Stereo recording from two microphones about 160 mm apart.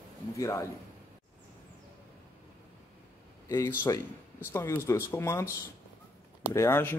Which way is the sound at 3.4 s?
15° left (ahead or behind).